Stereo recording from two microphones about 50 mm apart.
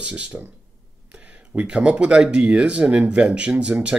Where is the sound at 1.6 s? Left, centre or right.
Right.